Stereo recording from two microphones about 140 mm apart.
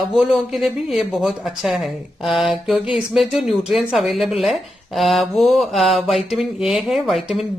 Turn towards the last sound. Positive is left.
turn(degrees=0)  # may be behind; listen again after turning